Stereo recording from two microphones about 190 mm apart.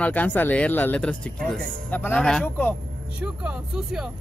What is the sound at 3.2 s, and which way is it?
Speech, 5° right (ahead or behind).